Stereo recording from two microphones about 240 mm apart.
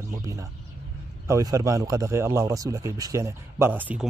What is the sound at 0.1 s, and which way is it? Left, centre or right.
Speech, centre.